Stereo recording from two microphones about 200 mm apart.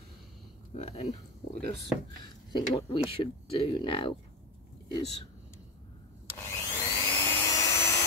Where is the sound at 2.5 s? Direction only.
25° left (ahead or behind).